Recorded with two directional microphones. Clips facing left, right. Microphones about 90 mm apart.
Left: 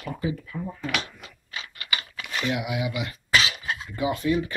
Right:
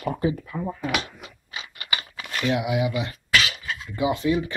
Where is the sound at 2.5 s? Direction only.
25° right (ahead or behind).